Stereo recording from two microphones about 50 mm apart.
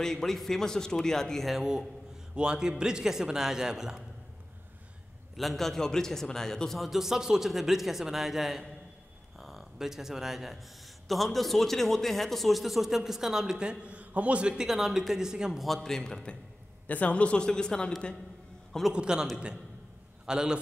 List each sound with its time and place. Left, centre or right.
0.0 s a man's voice: centre
1.5 s a man's voice: centre
5.3 s a man's voice: centre
6.8 s a man's voice: centre
14.7 s a man's voice: centre
15.6 s a man's voice: centre
16.8 s a man's voice: left
18.9 s a man's voice: centre